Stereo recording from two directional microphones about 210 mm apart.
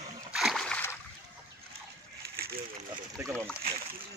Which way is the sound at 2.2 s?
50° right (ahead or behind).